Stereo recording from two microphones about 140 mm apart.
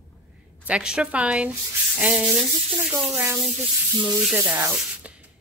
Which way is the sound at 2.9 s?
15° right (ahead or behind).